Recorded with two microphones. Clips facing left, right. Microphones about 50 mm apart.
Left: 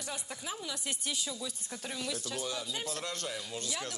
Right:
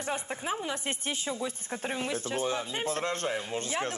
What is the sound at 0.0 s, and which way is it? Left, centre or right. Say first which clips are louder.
Speech: right 8 dB; right.